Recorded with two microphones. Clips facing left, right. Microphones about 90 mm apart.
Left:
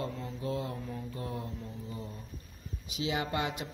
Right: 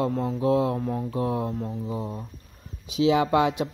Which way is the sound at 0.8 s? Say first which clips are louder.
Right 12 dB; 55° right (ahead or behind).